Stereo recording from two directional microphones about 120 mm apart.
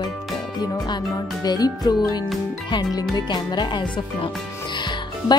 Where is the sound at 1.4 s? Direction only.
35° left (ahead or behind).